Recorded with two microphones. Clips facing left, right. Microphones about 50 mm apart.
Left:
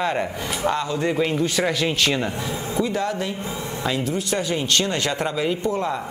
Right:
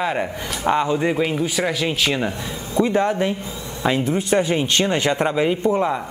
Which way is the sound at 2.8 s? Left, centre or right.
Right.